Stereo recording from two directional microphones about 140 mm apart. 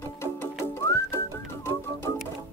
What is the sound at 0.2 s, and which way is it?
Whistling, 20° left (ahead or behind).